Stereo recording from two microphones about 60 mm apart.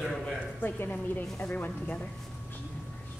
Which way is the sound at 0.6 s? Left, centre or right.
Left.